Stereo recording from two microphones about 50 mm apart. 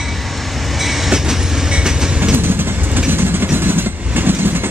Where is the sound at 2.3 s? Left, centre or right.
Right.